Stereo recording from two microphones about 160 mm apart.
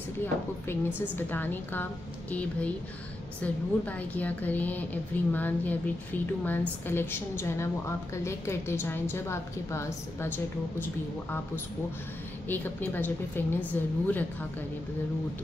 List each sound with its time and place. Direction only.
0.2 s a woman's voice: 15° left (ahead or behind)
3.3 s a woman's voice: 10° left (ahead or behind)